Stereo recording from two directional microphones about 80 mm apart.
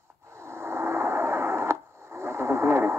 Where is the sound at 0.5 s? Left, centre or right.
Right.